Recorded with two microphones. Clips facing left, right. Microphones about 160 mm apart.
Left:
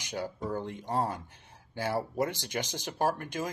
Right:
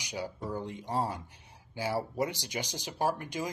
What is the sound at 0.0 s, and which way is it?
Speech, 50° left (ahead or behind).